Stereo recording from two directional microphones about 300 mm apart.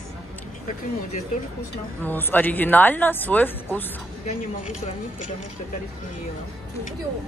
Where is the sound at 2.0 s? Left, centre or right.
Centre.